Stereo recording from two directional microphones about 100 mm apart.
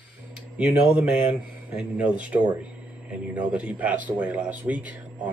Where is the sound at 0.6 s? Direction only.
10° right (ahead or behind).